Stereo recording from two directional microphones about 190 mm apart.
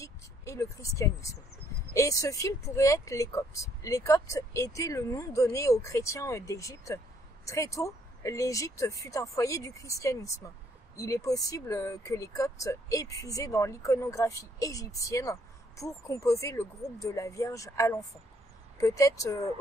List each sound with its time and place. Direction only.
0.0 s speech: 15° left (ahead or behind)